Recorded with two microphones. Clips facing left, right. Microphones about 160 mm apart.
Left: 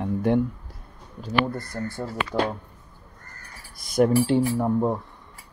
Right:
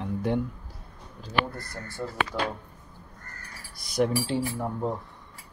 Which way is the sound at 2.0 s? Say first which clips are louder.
Right 2 dB; 50° left (ahead or behind).